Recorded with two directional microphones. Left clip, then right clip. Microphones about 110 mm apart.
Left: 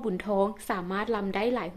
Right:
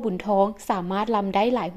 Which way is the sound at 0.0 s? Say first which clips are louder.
Right 6 dB; 40° right (ahead or behind).